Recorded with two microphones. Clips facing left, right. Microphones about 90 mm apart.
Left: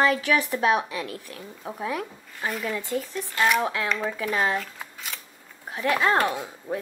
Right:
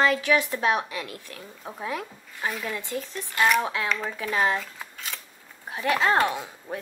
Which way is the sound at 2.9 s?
20° left (ahead or behind).